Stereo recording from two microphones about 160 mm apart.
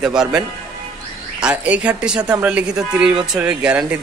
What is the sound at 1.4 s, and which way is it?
Speech, 10° right (ahead or behind).